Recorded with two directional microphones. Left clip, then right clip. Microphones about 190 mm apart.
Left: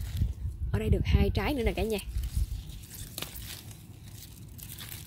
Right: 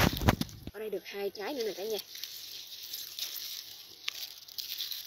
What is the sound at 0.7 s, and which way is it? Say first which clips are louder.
Speech: left 5 dB; 15° left (ahead or behind).